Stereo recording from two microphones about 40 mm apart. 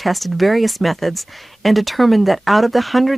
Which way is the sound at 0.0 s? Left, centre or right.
Centre.